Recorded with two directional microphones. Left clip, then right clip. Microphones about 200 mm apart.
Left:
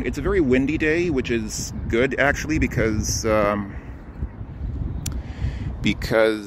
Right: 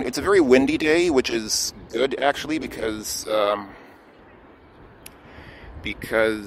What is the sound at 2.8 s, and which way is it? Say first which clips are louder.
Speech: left 4 dB; 15° right (ahead or behind).